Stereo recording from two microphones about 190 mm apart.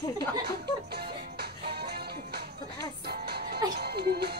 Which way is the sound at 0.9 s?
55° right (ahead or behind).